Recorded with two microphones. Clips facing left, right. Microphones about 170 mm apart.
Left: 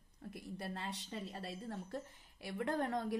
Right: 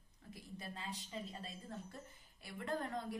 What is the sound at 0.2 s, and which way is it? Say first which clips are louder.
A woman's voice: left 6 dB; 60° left (ahead or behind).